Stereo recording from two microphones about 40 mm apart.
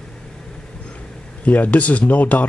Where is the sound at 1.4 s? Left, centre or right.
Left.